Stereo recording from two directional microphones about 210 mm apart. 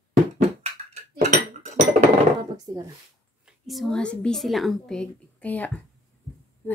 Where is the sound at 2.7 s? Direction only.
15° right (ahead or behind).